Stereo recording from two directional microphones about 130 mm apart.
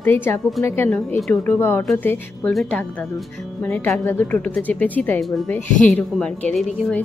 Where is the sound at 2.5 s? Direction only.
5° left (ahead or behind).